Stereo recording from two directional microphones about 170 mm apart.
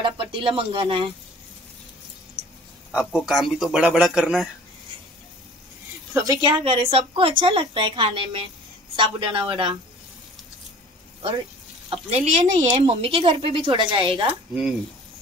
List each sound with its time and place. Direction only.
0.0 s speech: 30° right (ahead or behind)
2.9 s speech: 5° right (ahead or behind)
6.1 s a man's voice: 20° right (ahead or behind)
11.9 s speech: 40° right (ahead or behind)